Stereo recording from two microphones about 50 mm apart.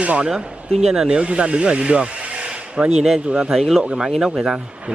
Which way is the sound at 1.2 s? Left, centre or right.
Right.